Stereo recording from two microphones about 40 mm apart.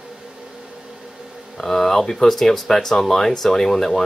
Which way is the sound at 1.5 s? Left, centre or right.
Centre.